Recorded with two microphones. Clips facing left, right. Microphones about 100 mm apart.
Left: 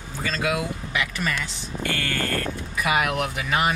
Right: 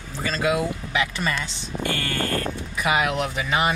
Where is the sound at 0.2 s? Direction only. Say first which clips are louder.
Right 3 dB; 30° right (ahead or behind).